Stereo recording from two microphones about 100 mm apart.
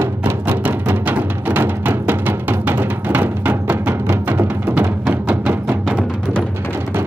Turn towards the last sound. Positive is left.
turn(degrees=-15)  # may be behind; listen again after turning